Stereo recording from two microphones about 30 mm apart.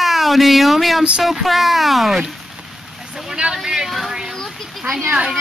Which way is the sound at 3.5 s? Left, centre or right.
Centre.